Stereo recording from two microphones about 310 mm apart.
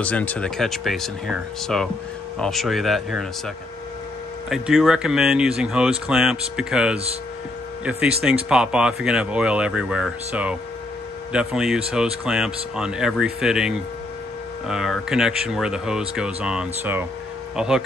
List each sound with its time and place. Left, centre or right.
0.0 s speech: centre
4.5 s speech: centre
8.5 s speech: centre